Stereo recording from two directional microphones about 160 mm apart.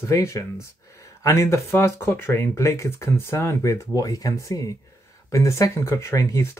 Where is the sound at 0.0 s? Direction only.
20° left (ahead or behind).